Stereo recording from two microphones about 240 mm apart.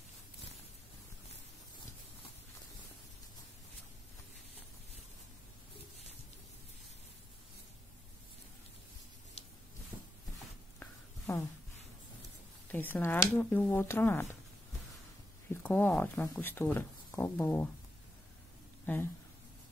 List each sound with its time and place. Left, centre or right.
10.8 s a sound: centre
12.7 s speech: centre
15.5 s speech: centre